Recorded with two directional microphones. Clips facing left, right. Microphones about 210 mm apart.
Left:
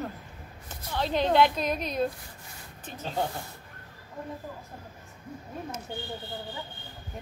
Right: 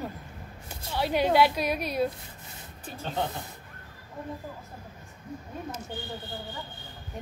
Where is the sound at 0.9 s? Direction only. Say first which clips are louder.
Right 1 dB; 10° right (ahead or behind).